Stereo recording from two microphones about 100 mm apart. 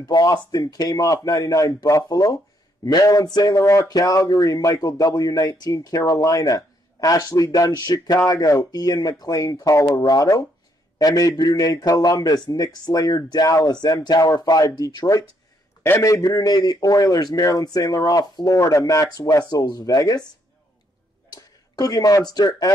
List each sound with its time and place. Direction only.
0.0 s speech: 40° left (ahead or behind)
21.3 s speech: 40° left (ahead or behind)